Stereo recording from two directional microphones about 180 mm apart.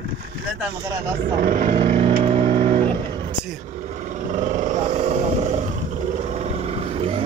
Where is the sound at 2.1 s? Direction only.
45° right (ahead or behind).